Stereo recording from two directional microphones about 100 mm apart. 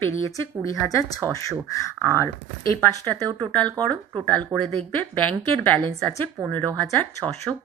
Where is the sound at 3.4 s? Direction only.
10° left (ahead or behind).